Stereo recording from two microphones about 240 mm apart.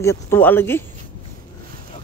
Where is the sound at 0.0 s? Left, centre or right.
Centre.